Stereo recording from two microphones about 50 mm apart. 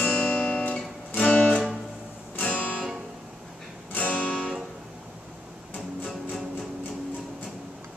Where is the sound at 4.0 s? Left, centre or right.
Left.